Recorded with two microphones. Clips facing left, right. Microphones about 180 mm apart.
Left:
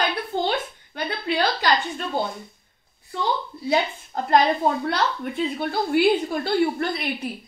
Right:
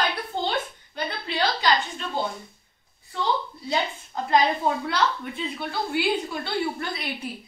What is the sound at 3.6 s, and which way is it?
A woman's voice, 55° left (ahead or behind).